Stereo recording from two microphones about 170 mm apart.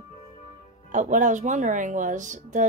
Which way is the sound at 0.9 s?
45° right (ahead or behind).